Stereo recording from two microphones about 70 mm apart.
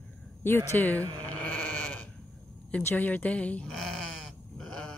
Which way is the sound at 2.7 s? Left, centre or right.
Left.